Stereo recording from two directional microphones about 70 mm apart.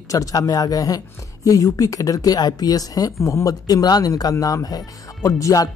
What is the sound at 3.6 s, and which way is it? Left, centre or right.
Speech, left.